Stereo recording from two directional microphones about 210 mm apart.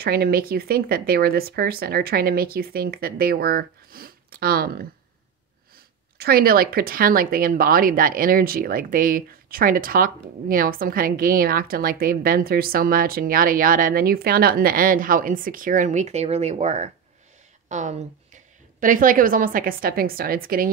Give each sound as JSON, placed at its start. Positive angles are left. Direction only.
{"t": 0.0, "sound": "speech", "side_deg": -45}
{"t": 6.1, "sound": "a woman's voice", "side_deg": -45}